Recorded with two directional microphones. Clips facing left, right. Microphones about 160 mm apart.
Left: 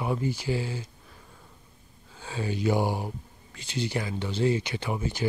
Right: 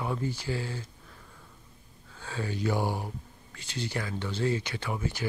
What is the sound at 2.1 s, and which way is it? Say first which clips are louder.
Speech: left 3 dB; 20° left (ahead or behind).